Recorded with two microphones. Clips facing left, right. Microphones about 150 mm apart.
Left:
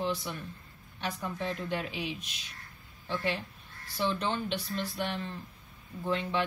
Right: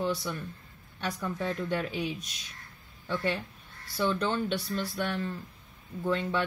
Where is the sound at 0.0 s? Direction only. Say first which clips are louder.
Right 2 dB; 40° right (ahead or behind).